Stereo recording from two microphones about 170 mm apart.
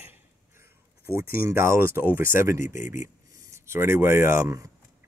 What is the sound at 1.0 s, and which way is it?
Speech, 15° right (ahead or behind).